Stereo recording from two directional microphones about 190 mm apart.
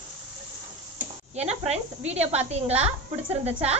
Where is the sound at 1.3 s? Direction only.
35° right (ahead or behind).